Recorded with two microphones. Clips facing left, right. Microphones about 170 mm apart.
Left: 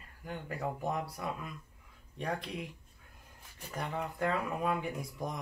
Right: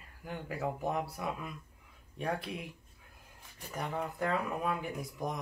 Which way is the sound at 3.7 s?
Centre (ahead or behind).